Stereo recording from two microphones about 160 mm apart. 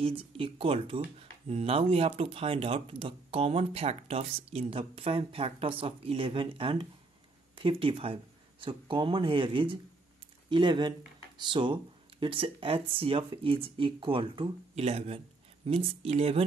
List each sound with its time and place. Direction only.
0.0 s speech: 35° right (ahead or behind)